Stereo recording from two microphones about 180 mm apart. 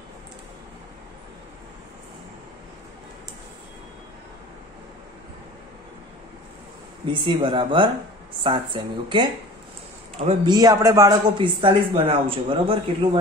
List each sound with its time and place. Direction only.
7.1 s speech: 25° right (ahead or behind)